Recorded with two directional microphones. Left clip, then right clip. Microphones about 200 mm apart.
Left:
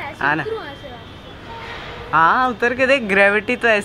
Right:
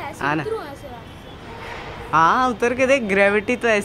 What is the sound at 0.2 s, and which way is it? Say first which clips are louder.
Speech: left 4 dB; 10° right (ahead or behind).